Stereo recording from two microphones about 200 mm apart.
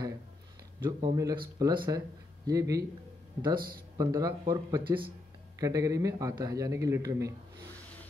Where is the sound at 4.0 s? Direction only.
15° right (ahead or behind).